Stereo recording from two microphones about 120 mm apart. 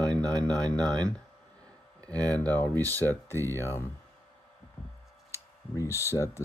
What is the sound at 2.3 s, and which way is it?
Speech, 15° left (ahead or behind).